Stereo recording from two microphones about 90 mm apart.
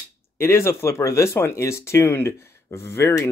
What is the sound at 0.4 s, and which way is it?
Speech, 30° left (ahead or behind).